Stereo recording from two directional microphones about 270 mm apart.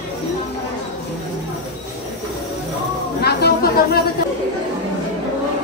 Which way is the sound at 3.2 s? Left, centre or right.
Left.